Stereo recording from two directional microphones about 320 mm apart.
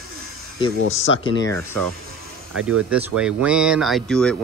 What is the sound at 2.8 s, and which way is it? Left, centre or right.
Speech, centre.